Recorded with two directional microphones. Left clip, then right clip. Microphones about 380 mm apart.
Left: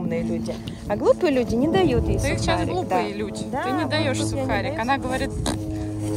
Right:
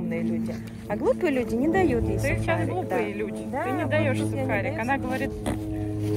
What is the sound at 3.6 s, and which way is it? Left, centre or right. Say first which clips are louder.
Speech: left 2 dB; left.